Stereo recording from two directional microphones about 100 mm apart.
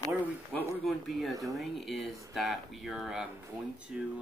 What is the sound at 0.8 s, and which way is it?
Speech, centre (ahead or behind).